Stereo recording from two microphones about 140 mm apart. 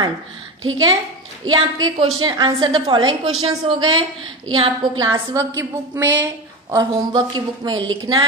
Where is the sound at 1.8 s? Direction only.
35° right (ahead or behind).